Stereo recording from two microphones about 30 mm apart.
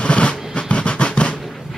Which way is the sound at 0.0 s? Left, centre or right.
Left.